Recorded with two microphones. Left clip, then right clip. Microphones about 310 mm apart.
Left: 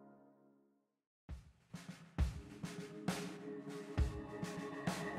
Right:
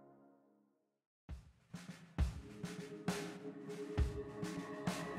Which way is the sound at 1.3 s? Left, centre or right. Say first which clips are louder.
Even; centre.